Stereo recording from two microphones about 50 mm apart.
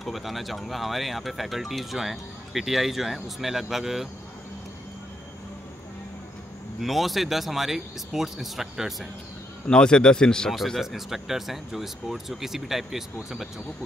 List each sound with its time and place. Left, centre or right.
0.0 s speech: centre
6.8 s speech: centre
9.7 s speech: centre
10.8 s speech: centre